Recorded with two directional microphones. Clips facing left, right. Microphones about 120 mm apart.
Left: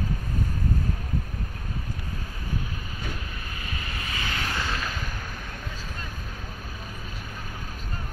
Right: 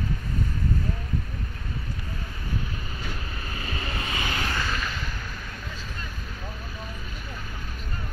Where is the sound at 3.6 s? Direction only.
30° right (ahead or behind).